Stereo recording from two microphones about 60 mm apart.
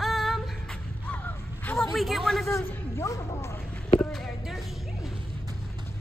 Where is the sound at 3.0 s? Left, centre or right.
Left.